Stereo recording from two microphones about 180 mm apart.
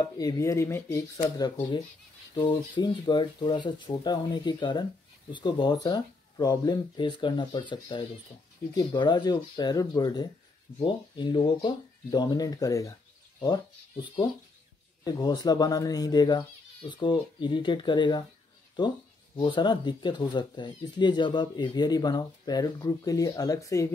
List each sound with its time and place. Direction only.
0.0 s speech: 20° left (ahead or behind)
2.3 s speech: 25° left (ahead or behind)